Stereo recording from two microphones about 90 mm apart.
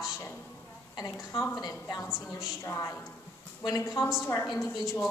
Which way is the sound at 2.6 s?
35° left (ahead or behind).